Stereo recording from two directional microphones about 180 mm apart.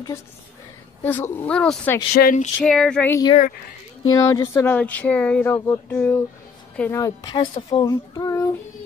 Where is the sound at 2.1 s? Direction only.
55° left (ahead or behind).